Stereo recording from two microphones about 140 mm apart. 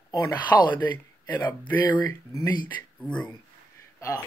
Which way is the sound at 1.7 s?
10° left (ahead or behind).